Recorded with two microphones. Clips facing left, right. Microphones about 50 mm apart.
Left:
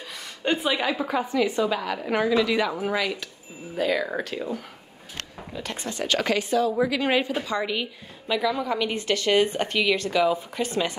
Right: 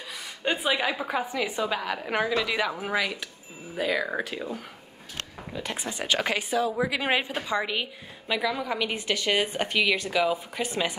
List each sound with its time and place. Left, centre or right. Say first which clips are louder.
0.4 s a woman's voice: left 2 dB; centre
5.5 s a woman's voice: left 1 dB; centre